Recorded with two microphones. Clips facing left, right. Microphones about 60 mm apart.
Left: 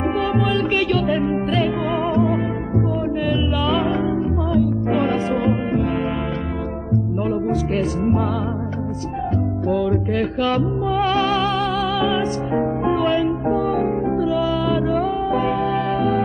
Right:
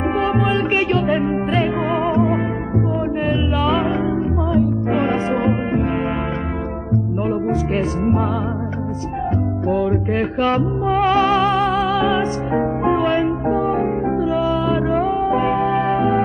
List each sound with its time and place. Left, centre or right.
0.4 s music: right
4.9 s music: right
7.2 s music: right
9.7 s music: right
12.9 s music: right
13.7 s music: right